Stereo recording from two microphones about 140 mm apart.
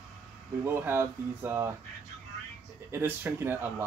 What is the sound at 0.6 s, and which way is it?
Speech, 15° right (ahead or behind).